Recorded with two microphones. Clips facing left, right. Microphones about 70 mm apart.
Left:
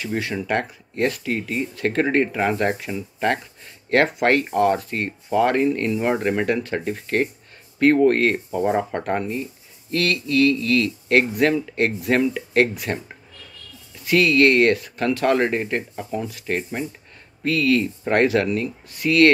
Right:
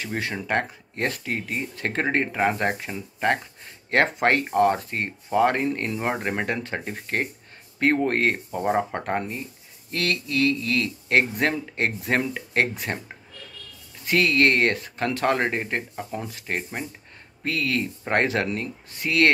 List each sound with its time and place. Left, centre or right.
0.0 s speech: right
14.0 s speech: right